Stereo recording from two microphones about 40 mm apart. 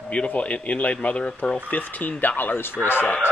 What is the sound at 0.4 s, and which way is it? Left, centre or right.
Speech, left.